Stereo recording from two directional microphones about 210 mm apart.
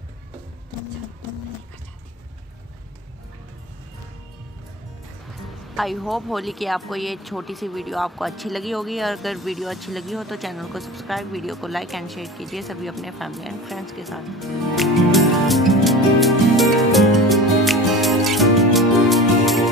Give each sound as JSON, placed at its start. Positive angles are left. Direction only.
{"t": 5.8, "sound": "speech", "side_deg": 0}